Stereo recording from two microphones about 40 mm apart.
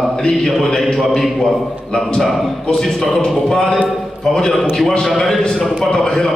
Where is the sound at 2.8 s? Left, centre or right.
Centre.